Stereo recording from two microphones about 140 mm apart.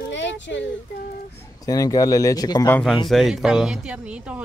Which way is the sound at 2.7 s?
5° left (ahead or behind).